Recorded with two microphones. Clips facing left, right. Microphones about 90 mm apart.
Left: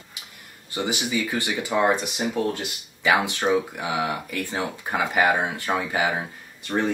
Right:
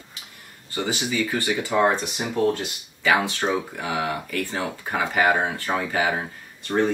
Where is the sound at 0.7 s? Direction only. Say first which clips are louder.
Even; 15° left (ahead or behind).